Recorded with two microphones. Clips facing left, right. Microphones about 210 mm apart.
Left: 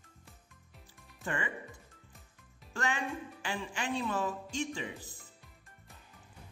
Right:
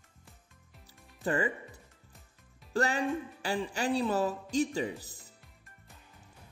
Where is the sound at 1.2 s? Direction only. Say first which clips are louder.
Right 7 dB; 35° right (ahead or behind).